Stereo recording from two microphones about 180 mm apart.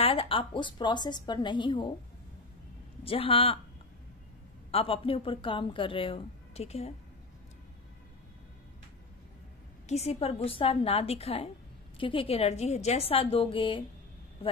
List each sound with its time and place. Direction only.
0.0 s a woman's voice: 30° left (ahead or behind)
3.0 s a woman's voice: 30° left (ahead or behind)
4.6 s a woman's voice: 30° left (ahead or behind)
9.8 s a woman's voice: 35° left (ahead or behind)